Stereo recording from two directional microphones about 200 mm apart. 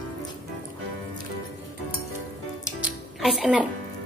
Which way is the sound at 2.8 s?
5° right (ahead or behind).